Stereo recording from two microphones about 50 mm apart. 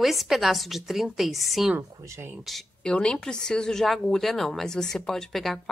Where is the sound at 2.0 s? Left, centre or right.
Right.